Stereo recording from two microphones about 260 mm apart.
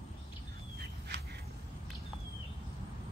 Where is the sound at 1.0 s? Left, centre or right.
Right.